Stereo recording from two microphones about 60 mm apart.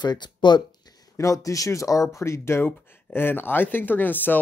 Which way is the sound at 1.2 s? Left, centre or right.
Left.